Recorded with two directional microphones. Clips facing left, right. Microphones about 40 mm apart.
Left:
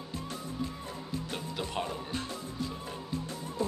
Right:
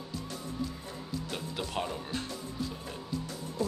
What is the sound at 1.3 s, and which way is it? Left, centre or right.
Speech, centre.